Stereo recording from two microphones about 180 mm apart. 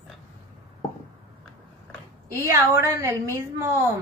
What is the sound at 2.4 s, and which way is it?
A woman's voice, 15° right (ahead or behind).